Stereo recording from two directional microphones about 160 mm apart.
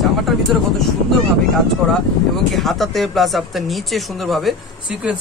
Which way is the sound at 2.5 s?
Centre (ahead or behind).